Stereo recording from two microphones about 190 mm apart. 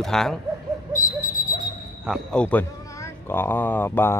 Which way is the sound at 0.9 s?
45° left (ahead or behind).